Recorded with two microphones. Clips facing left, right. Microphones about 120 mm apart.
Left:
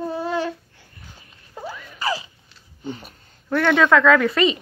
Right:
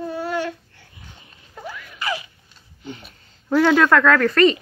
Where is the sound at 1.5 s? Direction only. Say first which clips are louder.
Left 1 dB; 30° left (ahead or behind).